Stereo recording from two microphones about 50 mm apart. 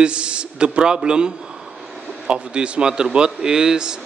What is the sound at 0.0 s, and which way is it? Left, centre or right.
A man's voice, right.